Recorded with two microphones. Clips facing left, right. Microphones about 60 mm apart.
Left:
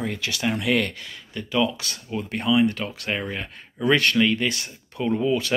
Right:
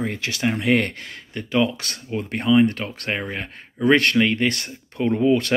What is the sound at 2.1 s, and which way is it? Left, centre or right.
Speech, right.